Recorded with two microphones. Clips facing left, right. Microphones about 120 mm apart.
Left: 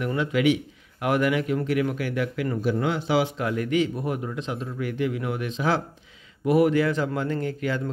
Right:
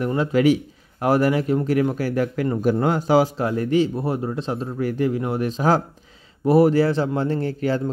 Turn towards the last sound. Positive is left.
turn(degrees=-35)  # may be behind; listen again after turning